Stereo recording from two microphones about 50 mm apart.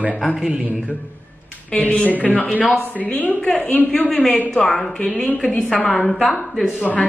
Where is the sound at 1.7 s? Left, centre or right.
Left.